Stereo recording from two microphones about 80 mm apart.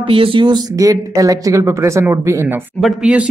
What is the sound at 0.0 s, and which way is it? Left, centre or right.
Speech, right.